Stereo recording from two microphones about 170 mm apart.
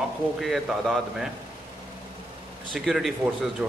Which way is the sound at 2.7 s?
Centre (ahead or behind).